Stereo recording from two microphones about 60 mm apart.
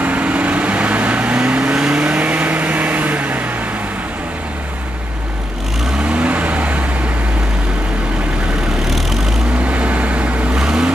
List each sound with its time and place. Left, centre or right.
0.0 s vehicle: right
6.0 s vehicle: right
8.9 s vehicle: centre
9.7 s vehicle: right